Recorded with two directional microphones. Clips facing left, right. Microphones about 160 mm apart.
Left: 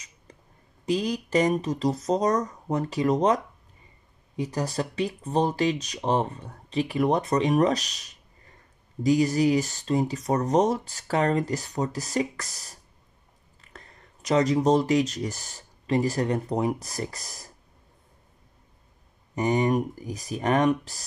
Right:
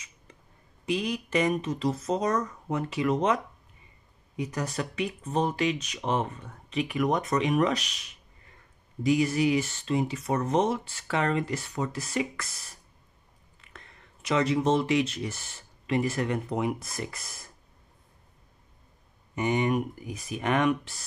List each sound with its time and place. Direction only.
0.3 s a sound: 35° left (ahead or behind)
0.8 s speech: 35° left (ahead or behind)
4.4 s speech: 35° left (ahead or behind)
19.3 s speech: 35° left (ahead or behind)